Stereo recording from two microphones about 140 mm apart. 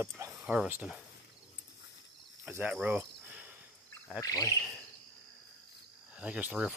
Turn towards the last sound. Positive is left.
turn(degrees=-5)  # may be behind; listen again after turning